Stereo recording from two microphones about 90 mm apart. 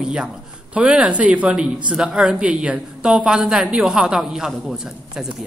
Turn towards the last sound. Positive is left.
turn(degrees=-5)  # may be behind; listen again after turning